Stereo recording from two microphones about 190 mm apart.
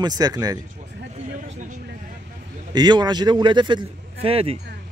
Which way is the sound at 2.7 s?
20° right (ahead or behind).